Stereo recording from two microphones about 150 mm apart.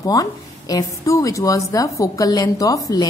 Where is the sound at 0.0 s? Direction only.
25° left (ahead or behind).